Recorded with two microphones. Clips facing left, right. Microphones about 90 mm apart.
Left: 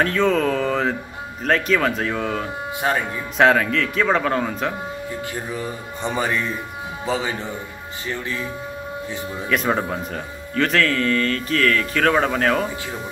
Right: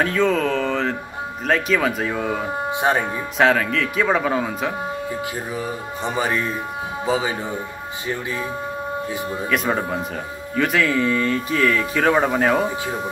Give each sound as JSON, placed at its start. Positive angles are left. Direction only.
{"t": 0.0, "sound": "speech", "side_deg": 0}
{"t": 2.7, "sound": "speech", "side_deg": -20}
{"t": 3.3, "sound": "speech", "side_deg": 0}
{"t": 9.5, "sound": "speech", "side_deg": 0}